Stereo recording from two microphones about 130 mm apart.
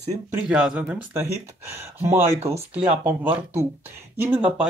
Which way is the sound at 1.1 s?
20° right (ahead or behind).